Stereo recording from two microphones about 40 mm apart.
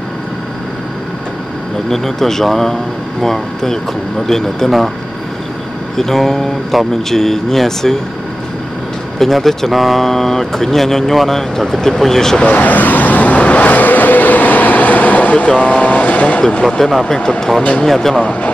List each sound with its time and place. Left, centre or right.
1.9 s speech: centre
4.6 s speech: centre
5.9 s speech: centre
9.2 s speech: centre
12.4 s vehicle: left
17.1 s speech: centre